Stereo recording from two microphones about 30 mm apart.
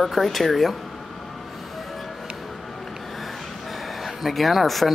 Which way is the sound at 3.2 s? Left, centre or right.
Centre.